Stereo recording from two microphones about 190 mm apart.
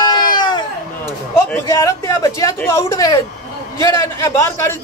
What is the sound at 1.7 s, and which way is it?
A man's voice, 15° left (ahead or behind).